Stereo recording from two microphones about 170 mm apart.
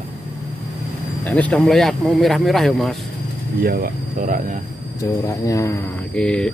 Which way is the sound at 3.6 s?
65° right (ahead or behind).